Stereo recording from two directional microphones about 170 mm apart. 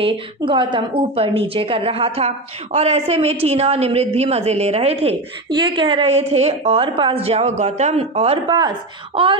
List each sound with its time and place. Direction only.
0.0 s a woman's voice: 30° right (ahead or behind)